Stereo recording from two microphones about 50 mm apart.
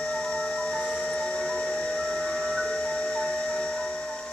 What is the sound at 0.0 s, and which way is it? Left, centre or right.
Music, centre.